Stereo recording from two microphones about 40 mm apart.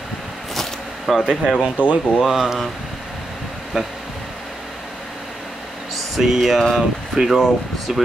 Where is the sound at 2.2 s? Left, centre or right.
Centre.